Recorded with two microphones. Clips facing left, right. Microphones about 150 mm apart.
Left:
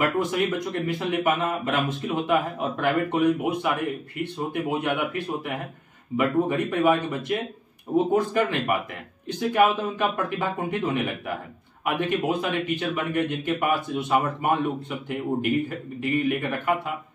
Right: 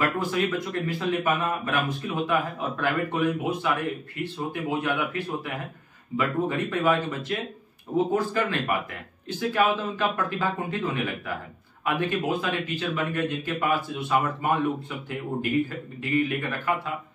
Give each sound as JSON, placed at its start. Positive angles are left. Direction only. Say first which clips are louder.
{"t": 0.0, "sound": "speech", "louder": "left 2 dB", "side_deg": 20}
{"t": 6.1, "sound": "speech", "louder": "left 3 dB", "side_deg": 15}